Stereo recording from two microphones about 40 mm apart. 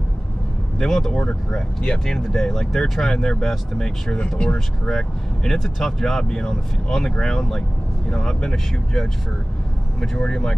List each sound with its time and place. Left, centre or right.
0.7 s speech: centre
1.1 s speech: left
2.0 s speech: centre
10.1 s speech: left